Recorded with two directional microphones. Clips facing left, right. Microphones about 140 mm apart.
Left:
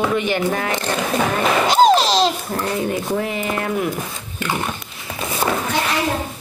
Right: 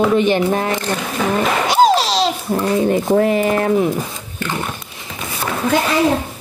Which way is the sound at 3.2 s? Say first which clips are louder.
Right 8 dB; 45° right (ahead or behind).